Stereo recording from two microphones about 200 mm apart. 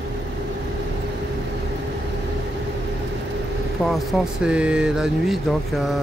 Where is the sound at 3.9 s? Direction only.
5° right (ahead or behind).